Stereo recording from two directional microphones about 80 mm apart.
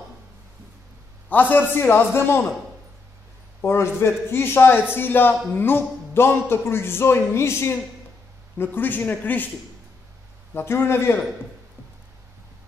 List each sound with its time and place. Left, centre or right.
1.3 s speech: left
3.6 s a man's voice: left
10.5 s a man's voice: left